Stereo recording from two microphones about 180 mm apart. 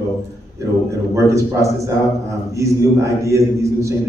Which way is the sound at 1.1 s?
15° right (ahead or behind).